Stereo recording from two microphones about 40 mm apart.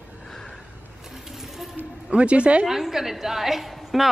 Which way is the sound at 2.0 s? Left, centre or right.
Right.